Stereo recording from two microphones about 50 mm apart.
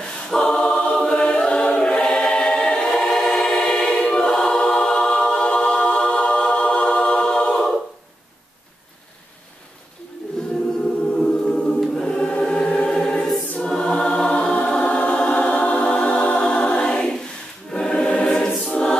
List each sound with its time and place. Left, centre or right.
0.2 s choir: centre
11.1 s music: centre
11.9 s choir: centre